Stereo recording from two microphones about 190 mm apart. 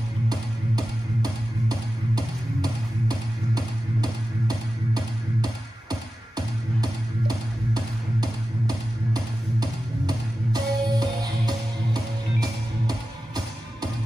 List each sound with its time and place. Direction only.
0.3 s music: 20° right (ahead or behind)